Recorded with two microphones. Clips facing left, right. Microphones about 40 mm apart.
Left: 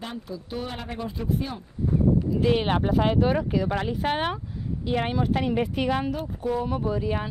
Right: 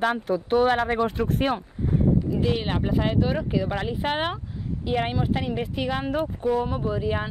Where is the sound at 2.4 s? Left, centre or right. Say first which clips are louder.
Left 3 dB; centre.